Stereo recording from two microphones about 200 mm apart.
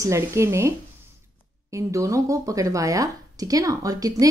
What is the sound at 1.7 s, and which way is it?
Speech, 15° right (ahead or behind).